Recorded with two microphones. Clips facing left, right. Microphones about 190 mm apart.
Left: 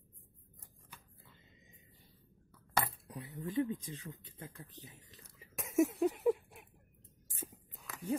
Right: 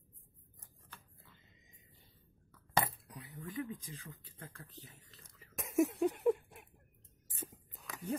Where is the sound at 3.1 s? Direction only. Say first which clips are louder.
Left 6 dB; 25° left (ahead or behind).